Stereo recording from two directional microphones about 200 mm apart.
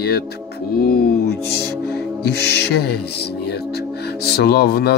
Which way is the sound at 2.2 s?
55° left (ahead or behind).